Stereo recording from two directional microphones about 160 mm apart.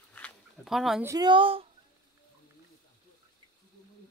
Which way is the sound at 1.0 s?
25° right (ahead or behind).